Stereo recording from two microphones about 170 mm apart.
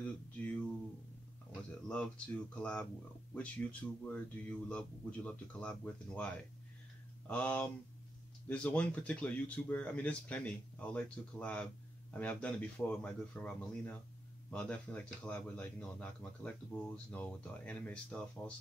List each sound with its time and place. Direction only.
0.0 s speech: 10° left (ahead or behind)
2.5 s speech: 5° left (ahead or behind)